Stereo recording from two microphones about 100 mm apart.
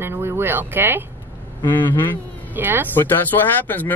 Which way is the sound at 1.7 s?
20° left (ahead or behind).